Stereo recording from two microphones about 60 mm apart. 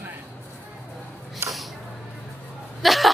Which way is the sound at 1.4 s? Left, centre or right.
Right.